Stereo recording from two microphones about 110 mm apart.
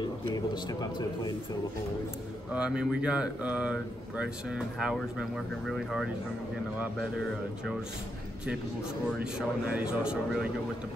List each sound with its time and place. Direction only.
0.3 s speech: 40° left (ahead or behind)
2.5 s speech: 10° right (ahead or behind)
9.0 s speech: 5° right (ahead or behind)